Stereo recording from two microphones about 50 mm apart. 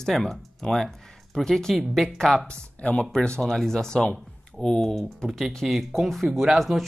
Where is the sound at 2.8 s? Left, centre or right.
Left.